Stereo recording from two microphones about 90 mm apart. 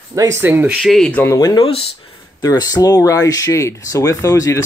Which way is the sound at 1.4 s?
45° left (ahead or behind).